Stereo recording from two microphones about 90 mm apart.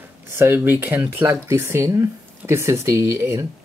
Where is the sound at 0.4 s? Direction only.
25° right (ahead or behind).